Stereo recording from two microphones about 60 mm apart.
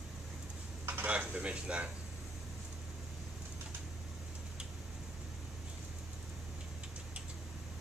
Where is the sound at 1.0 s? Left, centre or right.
Right.